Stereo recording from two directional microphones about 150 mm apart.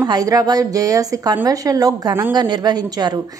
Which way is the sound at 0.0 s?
25° right (ahead or behind).